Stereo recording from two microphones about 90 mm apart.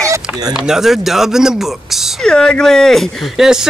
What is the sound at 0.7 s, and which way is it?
Speech, 5° right (ahead or behind).